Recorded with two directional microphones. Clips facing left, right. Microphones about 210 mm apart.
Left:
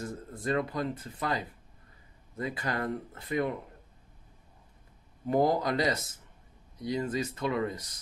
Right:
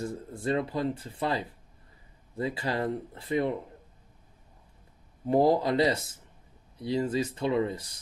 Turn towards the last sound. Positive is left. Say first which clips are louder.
# right 3 dB
turn(degrees=-30)  # may be behind; listen again after turning